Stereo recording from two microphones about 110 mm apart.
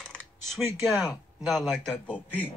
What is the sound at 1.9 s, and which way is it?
Speech, 15° left (ahead or behind).